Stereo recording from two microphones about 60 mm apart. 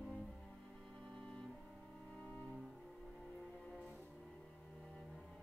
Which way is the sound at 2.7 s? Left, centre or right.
Centre.